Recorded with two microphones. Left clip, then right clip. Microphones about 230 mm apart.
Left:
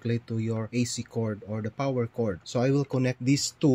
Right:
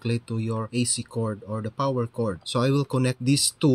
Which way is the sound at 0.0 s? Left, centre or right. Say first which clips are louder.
Right 2 dB; centre.